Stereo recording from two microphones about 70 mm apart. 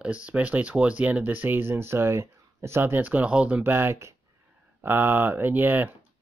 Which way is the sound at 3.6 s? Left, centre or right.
Right.